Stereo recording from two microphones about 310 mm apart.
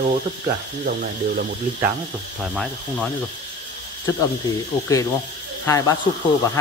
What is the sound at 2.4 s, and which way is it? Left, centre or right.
Speech, centre.